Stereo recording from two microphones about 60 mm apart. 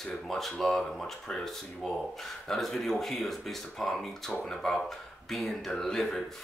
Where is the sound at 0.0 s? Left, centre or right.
Centre.